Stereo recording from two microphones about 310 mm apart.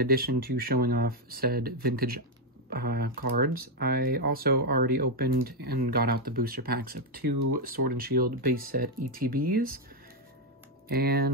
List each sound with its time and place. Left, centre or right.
0.0 s speech: right
10.9 s speech: right